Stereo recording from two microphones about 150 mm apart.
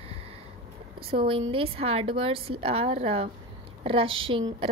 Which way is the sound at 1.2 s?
35° right (ahead or behind).